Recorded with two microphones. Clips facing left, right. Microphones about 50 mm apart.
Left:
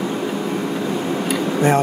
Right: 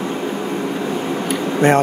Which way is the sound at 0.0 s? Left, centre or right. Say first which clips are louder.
Even; centre.